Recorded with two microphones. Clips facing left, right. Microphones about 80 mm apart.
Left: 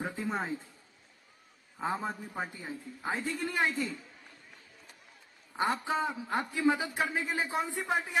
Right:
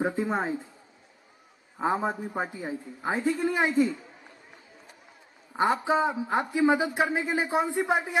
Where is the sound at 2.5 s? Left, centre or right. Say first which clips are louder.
Right 7 dB; centre.